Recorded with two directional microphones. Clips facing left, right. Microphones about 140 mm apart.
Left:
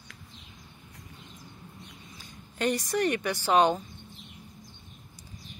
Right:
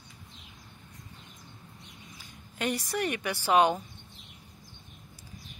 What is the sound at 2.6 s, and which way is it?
Speech, 5° right (ahead or behind).